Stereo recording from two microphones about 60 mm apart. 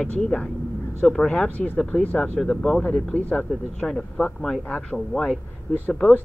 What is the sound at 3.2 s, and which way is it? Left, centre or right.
Speech, left.